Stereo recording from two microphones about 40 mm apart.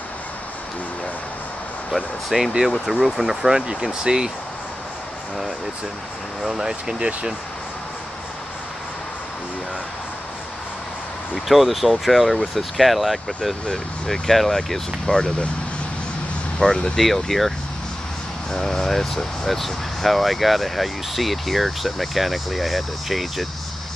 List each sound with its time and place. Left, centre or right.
2.3 s speech: centre
6.4 s speech: centre
11.3 s speech: centre
13.7 s speech: centre
16.5 s speech: centre
18.5 s speech: centre